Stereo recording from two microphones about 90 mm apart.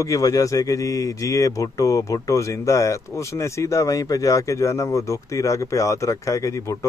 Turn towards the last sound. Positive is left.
turn(degrees=35)  # may be behind; listen again after turning